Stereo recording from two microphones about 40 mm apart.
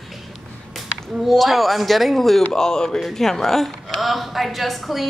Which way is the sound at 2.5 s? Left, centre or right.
Centre.